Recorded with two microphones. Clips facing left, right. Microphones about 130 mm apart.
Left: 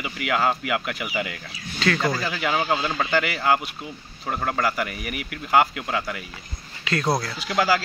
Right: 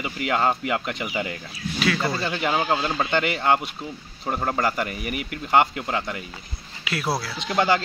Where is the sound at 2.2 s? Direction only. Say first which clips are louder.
Right 1 dB; 30° right (ahead or behind).